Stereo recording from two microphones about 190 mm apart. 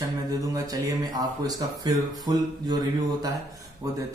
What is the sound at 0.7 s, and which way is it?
Speech, 20° right (ahead or behind).